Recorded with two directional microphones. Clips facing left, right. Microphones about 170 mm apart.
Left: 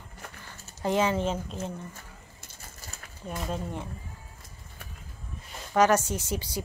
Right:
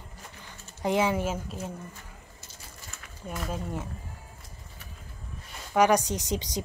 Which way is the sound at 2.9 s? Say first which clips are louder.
Left 1 dB; 30° left (ahead or behind).